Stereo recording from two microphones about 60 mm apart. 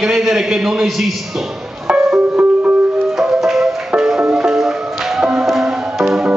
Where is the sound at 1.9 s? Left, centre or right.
Right.